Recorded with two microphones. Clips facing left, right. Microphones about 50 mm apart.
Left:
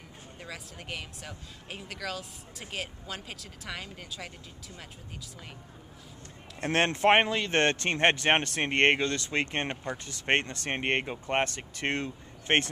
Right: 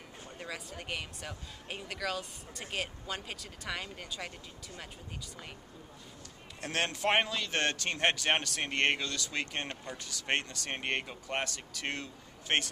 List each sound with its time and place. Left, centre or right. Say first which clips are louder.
0.4 s speech: right 1 dB; centre
6.6 s speech: left 7 dB; left